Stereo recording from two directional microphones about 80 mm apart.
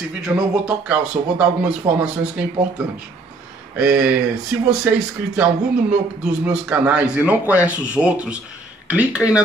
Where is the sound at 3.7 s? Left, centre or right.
Centre.